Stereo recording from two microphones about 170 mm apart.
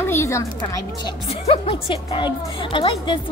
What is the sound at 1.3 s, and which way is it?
A woman's voice, 35° left (ahead or behind).